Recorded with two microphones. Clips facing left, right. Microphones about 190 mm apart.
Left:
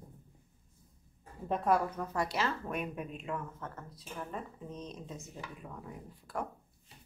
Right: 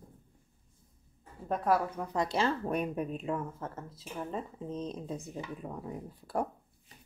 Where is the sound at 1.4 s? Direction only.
Centre (ahead or behind); by 6.5 s 35° right (ahead or behind).